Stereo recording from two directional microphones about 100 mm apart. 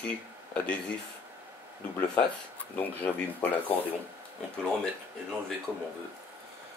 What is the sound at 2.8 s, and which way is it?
Speech, 15° left (ahead or behind).